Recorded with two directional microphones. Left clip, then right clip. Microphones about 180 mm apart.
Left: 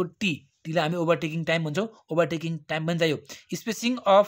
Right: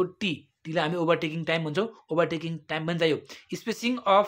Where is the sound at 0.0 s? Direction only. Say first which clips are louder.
Even; 35° left (ahead or behind).